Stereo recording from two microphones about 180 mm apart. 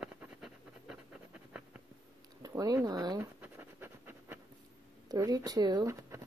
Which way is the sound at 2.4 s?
20° right (ahead or behind).